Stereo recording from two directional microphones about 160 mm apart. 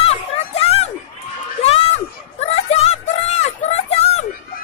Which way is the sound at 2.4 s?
40° left (ahead or behind).